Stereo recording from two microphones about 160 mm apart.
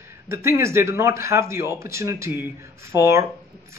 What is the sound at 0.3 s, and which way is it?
Speech, 15° right (ahead or behind).